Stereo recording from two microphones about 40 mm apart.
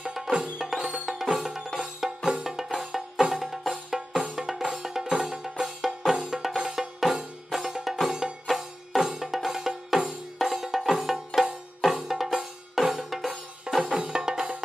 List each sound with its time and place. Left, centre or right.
0.0 s music: centre
13.7 s music: right